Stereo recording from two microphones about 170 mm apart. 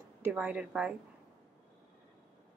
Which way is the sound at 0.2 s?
10° right (ahead or behind).